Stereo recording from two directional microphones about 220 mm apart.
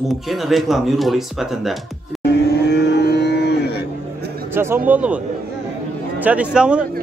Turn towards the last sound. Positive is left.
turn(degrees=-5)  # may be behind; listen again after turning